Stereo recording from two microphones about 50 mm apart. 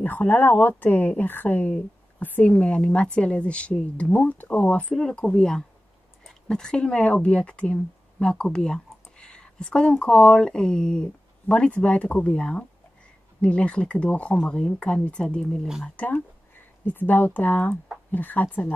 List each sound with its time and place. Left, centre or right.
0.0 s speech: left
2.5 s speech: left
4.9 s speech: centre
16.8 s speech: left